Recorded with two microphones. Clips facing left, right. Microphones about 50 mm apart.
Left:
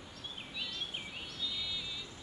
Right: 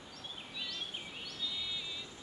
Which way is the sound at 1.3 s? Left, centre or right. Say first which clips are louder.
Even; centre.